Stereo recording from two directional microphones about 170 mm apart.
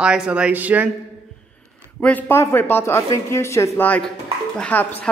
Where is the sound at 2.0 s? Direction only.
10° left (ahead or behind).